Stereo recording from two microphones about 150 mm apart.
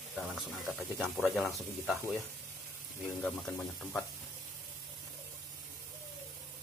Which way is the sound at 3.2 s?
Centre (ahead or behind).